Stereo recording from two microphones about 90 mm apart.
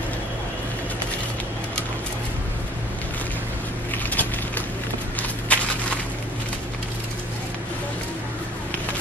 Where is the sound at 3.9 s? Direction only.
20° left (ahead or behind).